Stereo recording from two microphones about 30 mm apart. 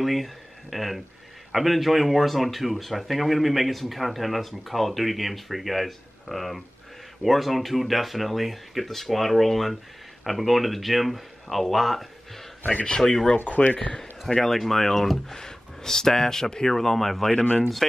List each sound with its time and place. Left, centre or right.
0.0 s speech: centre
13.0 s speech: centre
13.6 s speech: left
14.3 s speech: centre
16.7 s speech: centre
17.3 s speech: left